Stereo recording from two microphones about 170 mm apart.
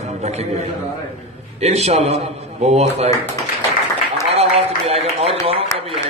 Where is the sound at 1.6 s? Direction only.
40° right (ahead or behind).